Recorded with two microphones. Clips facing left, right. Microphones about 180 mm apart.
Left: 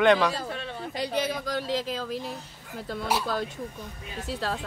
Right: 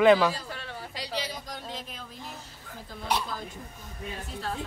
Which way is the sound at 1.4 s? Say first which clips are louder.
Left 11 dB; 90° left.